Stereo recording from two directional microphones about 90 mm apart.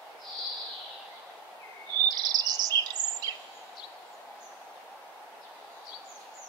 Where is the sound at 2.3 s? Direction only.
50° right (ahead or behind).